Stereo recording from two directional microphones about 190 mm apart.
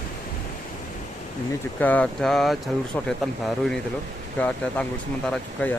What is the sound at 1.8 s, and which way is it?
Speech, 5° left (ahead or behind).